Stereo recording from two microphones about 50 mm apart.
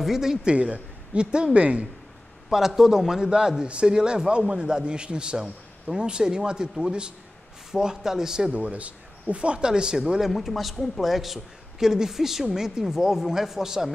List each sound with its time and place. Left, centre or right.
0.0 s a woman's voice: centre; by 1.9 s right
2.5 s a man's voice: centre
8.5 s a woman's voice: right
10.3 s a man's voice: centre